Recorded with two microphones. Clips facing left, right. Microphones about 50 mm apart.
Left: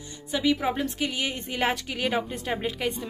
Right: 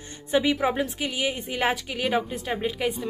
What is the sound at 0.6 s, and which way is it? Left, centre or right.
A woman's voice, centre.